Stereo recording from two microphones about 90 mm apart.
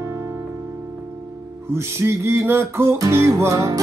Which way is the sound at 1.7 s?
25° right (ahead or behind).